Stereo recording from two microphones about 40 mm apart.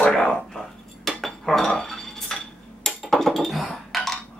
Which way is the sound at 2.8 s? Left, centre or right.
Centre.